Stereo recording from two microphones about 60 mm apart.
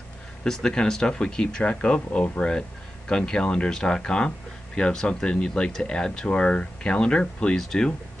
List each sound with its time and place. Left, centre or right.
0.4 s speech: centre